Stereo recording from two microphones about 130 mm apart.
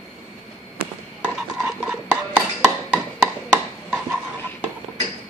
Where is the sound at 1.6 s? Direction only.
10° right (ahead or behind).